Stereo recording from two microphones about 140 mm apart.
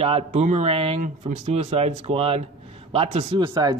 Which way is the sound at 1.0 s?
55° right (ahead or behind).